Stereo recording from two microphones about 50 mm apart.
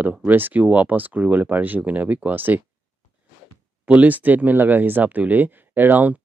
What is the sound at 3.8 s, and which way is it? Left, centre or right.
Speech, right.